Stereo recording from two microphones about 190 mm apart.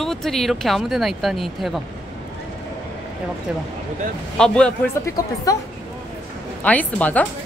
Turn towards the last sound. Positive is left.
turn(degrees=10)  # may be behind; listen again after turning